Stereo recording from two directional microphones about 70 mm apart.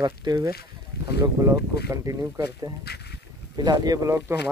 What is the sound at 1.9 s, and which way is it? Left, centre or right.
Speech, right.